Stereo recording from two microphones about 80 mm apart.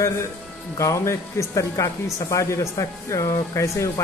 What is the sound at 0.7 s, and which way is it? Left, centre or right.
Speech, left.